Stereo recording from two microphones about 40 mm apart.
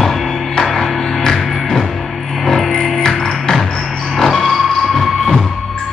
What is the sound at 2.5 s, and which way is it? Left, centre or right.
Music, centre.